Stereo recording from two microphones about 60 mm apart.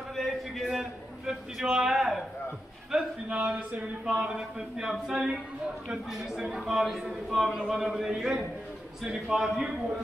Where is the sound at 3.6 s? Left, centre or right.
Right.